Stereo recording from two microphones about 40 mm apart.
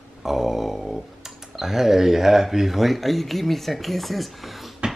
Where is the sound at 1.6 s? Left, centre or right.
Centre.